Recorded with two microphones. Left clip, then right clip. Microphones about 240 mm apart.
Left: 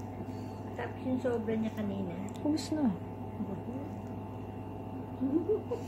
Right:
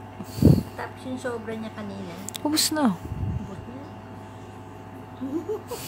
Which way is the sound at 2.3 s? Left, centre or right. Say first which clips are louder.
Right 10 dB; right.